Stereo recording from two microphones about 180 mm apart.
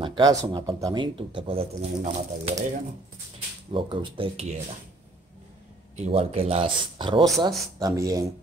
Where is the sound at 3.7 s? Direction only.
30° right (ahead or behind).